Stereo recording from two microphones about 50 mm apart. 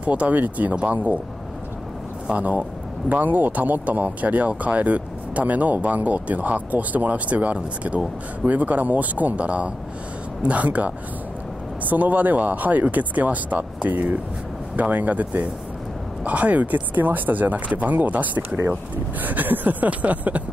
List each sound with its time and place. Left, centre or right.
0.0 s speech: right
2.2 s speech: right